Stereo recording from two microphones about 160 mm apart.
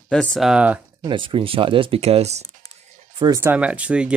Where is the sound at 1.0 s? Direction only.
30° right (ahead or behind).